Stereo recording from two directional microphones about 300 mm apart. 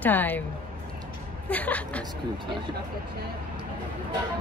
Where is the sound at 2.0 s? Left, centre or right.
Centre.